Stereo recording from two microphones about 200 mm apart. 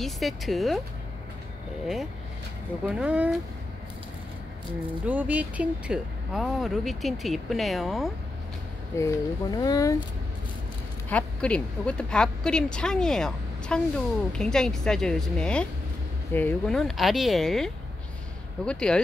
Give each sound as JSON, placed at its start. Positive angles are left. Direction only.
{"t": 0.0, "sound": "speech", "side_deg": 0}
{"t": 2.9, "sound": "speech", "side_deg": -5}
{"t": 5.0, "sound": "speech", "side_deg": -10}
{"t": 8.9, "sound": "speech", "side_deg": 15}
{"t": 11.1, "sound": "speech", "side_deg": 5}
{"t": 18.7, "sound": "speech", "side_deg": 5}